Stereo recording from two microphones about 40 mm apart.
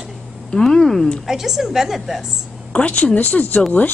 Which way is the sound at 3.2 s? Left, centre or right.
Left.